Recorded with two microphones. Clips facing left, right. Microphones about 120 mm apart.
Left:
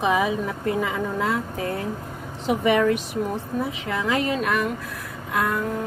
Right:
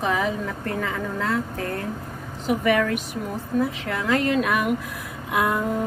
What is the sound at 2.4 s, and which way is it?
Speech, 25° left (ahead or behind).